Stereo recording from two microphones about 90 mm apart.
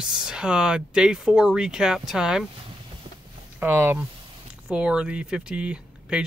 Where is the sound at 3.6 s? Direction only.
25° right (ahead or behind).